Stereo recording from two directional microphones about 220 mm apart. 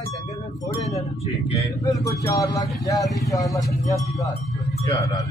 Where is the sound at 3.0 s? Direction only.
Centre (ahead or behind).